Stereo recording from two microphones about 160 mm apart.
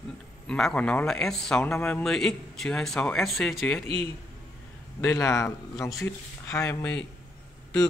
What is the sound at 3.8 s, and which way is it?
Speech, 40° right (ahead or behind).